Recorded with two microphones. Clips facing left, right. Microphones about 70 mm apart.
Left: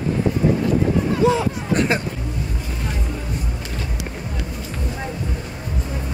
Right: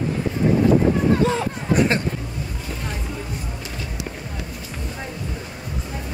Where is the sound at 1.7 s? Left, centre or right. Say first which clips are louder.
Right 1 dB; centre.